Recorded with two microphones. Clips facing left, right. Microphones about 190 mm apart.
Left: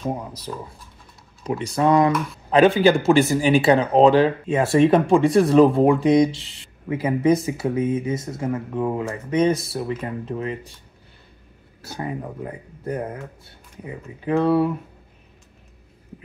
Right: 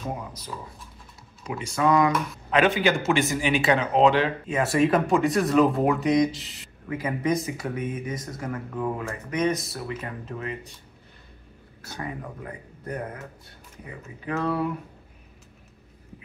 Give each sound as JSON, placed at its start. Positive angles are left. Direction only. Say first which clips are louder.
{"t": 1.4, "sound": "speech", "louder": "left 4 dB", "side_deg": 35}
{"t": 11.8, "sound": "speech", "louder": "left 5 dB", "side_deg": 30}